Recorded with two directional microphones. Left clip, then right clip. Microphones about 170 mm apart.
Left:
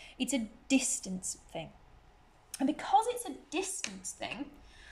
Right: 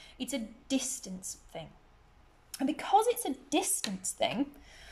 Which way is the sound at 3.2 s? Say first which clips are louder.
Right 5 dB; 45° right (ahead or behind).